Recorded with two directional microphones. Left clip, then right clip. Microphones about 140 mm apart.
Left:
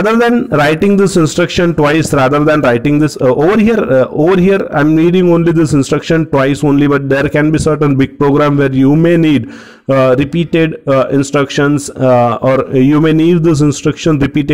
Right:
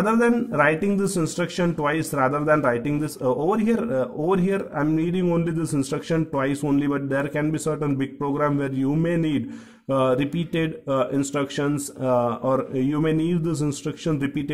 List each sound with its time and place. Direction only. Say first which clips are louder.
0.0 s a man's voice: left 10 dB; 45° left (ahead or behind)
5.2 s a man's voice: left 15 dB; 35° left (ahead or behind)